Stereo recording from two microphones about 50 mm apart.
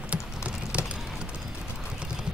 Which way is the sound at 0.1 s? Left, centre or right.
Right.